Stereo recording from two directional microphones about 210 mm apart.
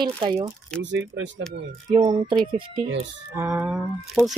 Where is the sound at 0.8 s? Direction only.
60° right (ahead or behind).